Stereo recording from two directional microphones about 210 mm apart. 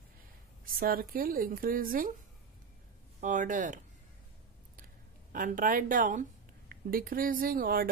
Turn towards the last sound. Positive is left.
turn(degrees=-45)  # may be behind; listen again after turning